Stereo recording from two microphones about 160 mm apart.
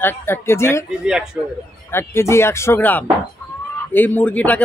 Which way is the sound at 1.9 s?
15° left (ahead or behind).